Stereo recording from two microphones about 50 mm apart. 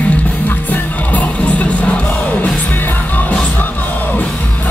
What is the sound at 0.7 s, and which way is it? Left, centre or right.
Music, left.